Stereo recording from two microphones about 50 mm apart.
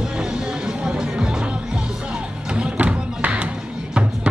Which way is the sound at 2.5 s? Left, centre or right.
Centre.